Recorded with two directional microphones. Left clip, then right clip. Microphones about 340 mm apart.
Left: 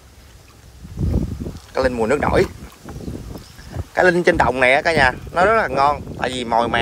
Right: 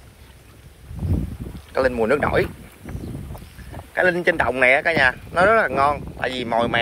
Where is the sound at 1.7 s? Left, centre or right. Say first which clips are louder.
Left 1 dB; centre.